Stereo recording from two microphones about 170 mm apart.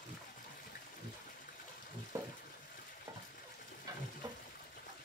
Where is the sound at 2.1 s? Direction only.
15° right (ahead or behind).